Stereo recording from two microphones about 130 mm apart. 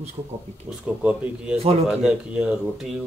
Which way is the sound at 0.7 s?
10° right (ahead or behind).